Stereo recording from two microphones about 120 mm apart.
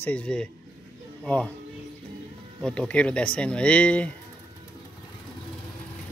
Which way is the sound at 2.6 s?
10° left (ahead or behind).